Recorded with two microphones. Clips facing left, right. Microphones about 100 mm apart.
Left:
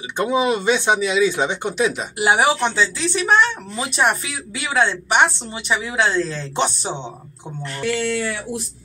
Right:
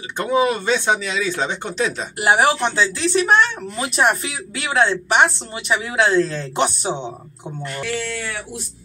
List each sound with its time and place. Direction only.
0.2 s speech: 20° left (ahead or behind)
2.1 s a woman's voice: centre (ahead or behind)